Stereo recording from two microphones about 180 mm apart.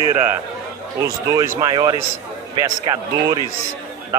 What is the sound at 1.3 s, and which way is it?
Speech, 15° right (ahead or behind).